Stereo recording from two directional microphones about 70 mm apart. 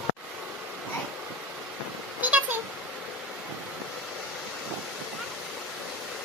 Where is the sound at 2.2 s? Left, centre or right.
Right.